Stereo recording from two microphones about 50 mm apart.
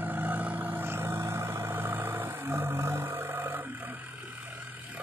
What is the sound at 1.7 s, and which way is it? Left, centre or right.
Vehicle, right.